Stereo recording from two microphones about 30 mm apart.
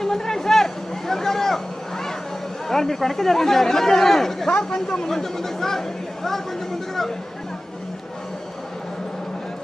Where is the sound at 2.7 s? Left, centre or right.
Centre.